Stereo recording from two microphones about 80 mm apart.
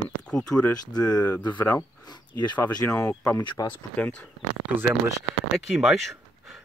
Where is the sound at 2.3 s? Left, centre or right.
Left.